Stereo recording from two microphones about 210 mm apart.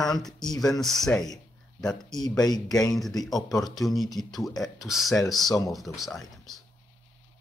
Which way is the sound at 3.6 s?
Centre (ahead or behind).